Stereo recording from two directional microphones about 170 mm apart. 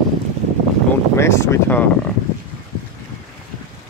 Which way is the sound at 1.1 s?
15° left (ahead or behind).